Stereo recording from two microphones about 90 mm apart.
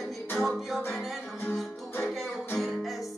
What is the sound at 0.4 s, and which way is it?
Music, centre (ahead or behind).